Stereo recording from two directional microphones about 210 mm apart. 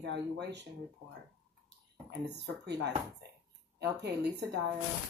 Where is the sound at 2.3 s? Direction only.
55° right (ahead or behind).